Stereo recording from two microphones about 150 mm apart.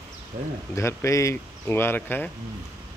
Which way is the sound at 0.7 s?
20° left (ahead or behind).